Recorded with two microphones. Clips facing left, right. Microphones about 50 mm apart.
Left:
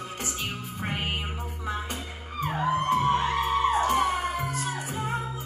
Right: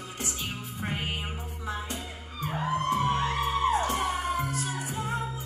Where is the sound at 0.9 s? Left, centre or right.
Left.